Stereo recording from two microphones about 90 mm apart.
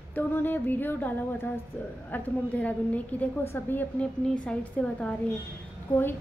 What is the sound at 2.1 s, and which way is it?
A woman's voice, 15° left (ahead or behind).